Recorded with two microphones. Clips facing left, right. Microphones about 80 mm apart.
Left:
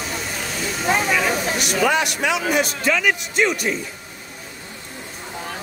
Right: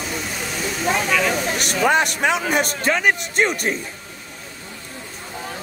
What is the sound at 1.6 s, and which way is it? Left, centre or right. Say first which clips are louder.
A man's voice: right 2 dB; right.